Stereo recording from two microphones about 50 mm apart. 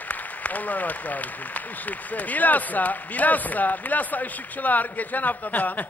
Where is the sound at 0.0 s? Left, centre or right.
Left.